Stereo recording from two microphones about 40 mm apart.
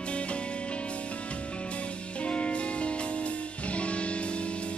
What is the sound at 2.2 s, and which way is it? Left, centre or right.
Music, left.